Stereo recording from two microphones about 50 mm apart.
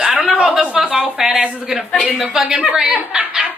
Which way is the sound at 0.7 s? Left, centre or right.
Right.